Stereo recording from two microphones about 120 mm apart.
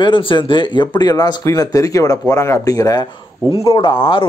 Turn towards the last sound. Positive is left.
turn(degrees=45)  # may be behind; listen again after turning